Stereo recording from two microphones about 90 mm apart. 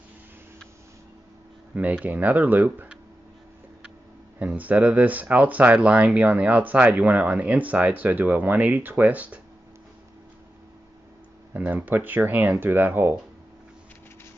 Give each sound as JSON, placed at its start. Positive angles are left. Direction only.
{"t": 1.7, "sound": "speech", "side_deg": -15}
{"t": 4.4, "sound": "speech", "side_deg": -15}
{"t": 11.5, "sound": "speech", "side_deg": -20}